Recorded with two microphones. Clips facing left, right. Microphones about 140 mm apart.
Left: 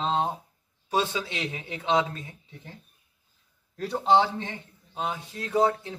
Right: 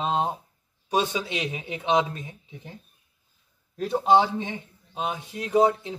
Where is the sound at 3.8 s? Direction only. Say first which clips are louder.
Right 2 dB; 15° right (ahead or behind).